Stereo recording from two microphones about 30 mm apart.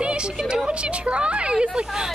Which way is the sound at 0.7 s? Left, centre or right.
Right.